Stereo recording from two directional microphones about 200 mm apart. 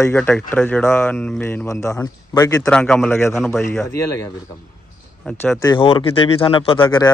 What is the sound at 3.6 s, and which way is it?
A man's voice, 15° left (ahead or behind).